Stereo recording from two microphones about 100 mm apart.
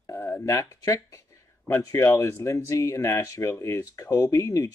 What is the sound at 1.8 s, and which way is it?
Speech, 30° left (ahead or behind).